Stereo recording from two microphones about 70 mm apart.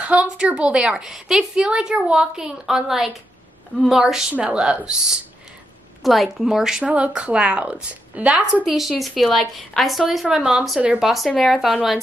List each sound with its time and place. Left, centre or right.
0.0 s a woman's voice: centre
6.0 s a woman's voice: centre
6.8 s a woman's voice: centre
8.6 s a woman's voice: centre
10.2 s a woman's voice: centre
11.1 s a woman's voice: centre